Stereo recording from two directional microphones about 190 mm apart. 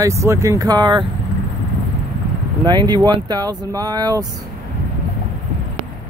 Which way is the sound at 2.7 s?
25° right (ahead or behind).